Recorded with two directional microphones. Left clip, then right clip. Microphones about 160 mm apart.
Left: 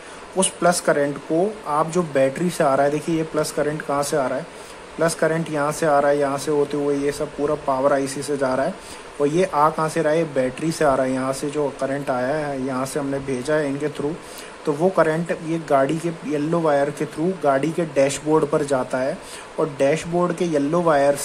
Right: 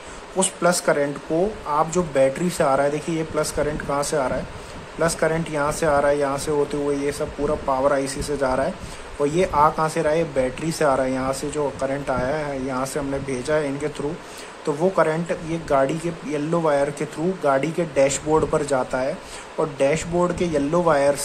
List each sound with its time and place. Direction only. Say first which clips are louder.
0.4 s speech: left 1 dB; 10° left (ahead or behind)
14.7 s speech: left 1 dB; 10° left (ahead or behind)